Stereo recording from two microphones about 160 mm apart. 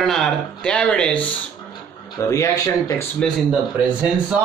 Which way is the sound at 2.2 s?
20° left (ahead or behind).